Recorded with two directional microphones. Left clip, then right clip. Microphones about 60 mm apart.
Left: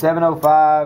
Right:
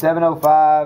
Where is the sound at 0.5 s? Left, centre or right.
Centre.